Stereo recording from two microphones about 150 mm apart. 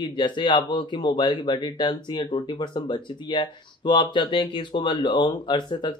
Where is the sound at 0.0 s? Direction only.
30° left (ahead or behind).